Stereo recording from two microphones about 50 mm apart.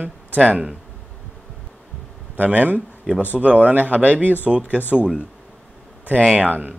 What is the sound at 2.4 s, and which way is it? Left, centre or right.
Speech, right.